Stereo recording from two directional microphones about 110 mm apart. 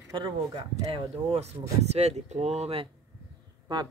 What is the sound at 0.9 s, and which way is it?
Speech, 70° right (ahead or behind).